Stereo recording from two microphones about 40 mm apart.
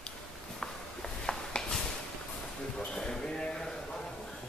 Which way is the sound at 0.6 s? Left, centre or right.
Centre.